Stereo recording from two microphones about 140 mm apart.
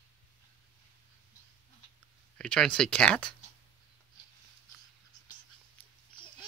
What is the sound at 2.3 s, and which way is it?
Speech, 5° left (ahead or behind).